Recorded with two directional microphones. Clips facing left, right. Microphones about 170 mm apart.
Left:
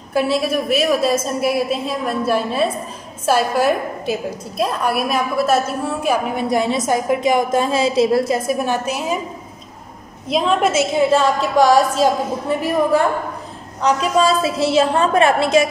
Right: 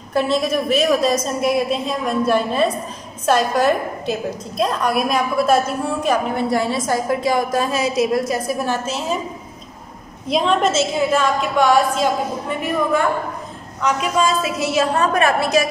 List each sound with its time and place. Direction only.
0.1 s a woman's voice: 5° left (ahead or behind)
6.0 s a woman's voice: 15° left (ahead or behind)
8.6 s a woman's voice: 15° left (ahead or behind)
10.2 s a woman's voice: centre (ahead or behind)
10.7 s a woman's voice: 15° left (ahead or behind)
11.1 s a woman's voice: 35° left (ahead or behind)